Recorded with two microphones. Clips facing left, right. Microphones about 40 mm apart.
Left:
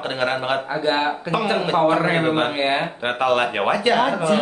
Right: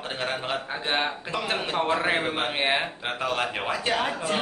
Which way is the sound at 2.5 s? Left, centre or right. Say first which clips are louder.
Left 4 dB; centre.